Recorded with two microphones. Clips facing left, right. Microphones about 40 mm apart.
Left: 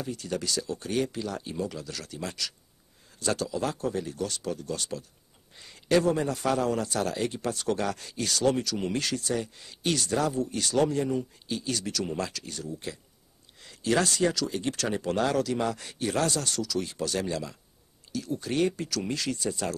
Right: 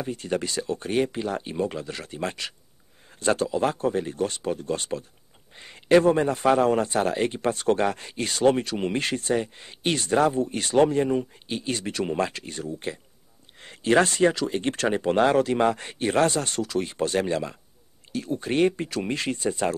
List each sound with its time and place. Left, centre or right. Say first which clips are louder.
0.0 s a man's voice: right 5 dB; right